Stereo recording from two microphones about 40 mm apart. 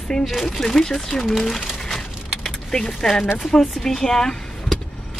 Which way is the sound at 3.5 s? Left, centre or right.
Centre.